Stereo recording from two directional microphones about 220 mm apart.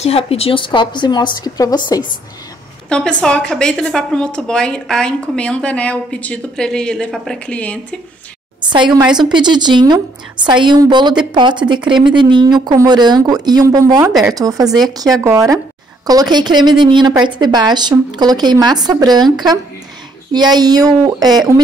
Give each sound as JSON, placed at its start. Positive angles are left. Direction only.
{"t": 0.0, "sound": "a woman's voice", "side_deg": 25}
{"t": 2.9, "sound": "a woman's voice", "side_deg": 5}
{"t": 8.5, "sound": "a woman's voice", "side_deg": -20}